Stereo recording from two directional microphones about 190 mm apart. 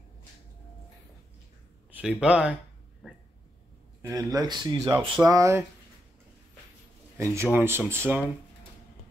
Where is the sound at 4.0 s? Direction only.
15° right (ahead or behind).